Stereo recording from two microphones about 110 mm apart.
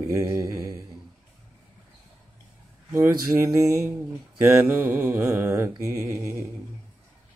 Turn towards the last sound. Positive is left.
turn(degrees=-25)  # may be behind; listen again after turning